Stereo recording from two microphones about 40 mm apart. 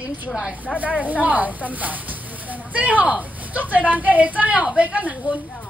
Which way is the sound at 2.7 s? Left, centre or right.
Right.